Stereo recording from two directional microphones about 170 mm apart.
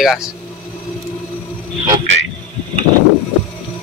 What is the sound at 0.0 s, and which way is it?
Speech, centre (ahead or behind).